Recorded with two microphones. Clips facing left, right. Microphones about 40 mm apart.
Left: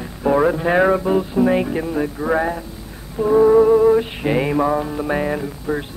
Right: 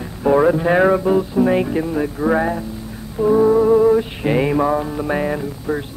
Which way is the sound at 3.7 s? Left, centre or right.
Centre.